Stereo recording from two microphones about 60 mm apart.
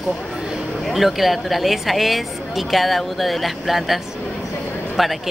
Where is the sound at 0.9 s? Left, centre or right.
Centre.